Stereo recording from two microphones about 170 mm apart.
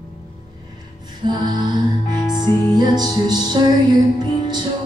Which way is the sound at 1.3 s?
25° right (ahead or behind).